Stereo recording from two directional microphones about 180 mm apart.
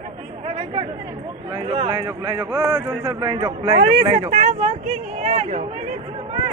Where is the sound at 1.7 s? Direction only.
30° right (ahead or behind).